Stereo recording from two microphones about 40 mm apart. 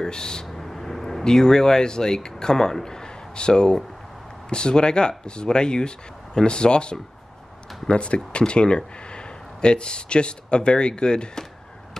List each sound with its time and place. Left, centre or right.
0.0 s speech: centre
0.5 s vehicle: centre
1.2 s speech: centre